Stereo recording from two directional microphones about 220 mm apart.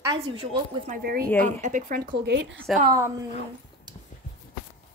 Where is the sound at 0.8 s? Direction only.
40° right (ahead or behind).